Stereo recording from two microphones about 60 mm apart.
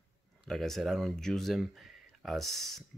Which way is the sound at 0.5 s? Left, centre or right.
Centre.